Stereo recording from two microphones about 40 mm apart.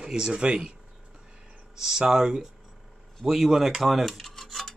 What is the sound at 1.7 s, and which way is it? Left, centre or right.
Speech, centre.